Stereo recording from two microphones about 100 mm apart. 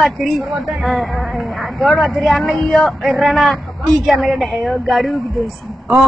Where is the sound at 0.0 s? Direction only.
Centre (ahead or behind).